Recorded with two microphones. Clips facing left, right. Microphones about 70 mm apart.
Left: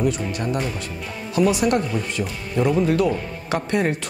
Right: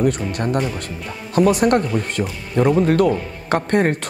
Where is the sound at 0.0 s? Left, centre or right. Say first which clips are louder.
Right 3 dB; right.